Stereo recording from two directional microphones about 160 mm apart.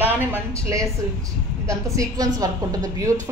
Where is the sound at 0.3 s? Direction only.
20° right (ahead or behind).